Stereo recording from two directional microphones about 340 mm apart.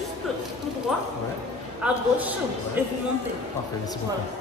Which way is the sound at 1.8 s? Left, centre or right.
Centre.